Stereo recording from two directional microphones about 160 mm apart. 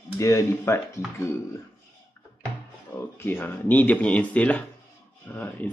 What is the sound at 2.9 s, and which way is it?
Speech, 15° left (ahead or behind).